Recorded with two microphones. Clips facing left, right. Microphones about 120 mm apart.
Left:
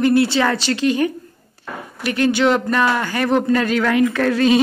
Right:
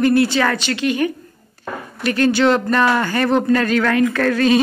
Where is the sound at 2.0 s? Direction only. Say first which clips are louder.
Right 1 dB; 15° left (ahead or behind).